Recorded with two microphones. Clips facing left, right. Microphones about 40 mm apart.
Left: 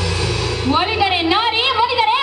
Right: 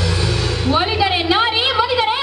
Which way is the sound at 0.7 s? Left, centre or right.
Left.